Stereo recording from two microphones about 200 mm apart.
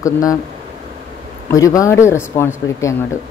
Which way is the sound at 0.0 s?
15° left (ahead or behind).